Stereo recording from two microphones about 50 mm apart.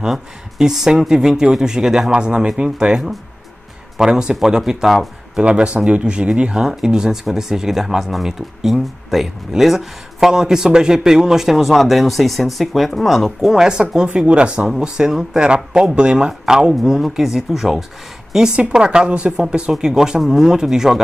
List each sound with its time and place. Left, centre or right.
0.0 s speech: centre
5.4 s speech: right; by 13.7 s centre
13.7 s a man's voice: centre
17.2 s speech: centre
18.6 s a man's voice: centre